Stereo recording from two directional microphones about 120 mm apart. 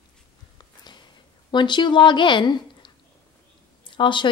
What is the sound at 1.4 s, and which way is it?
A woman's voice, 40° left (ahead or behind).